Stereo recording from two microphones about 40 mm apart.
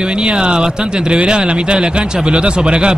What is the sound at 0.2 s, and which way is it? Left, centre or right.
Speech, right.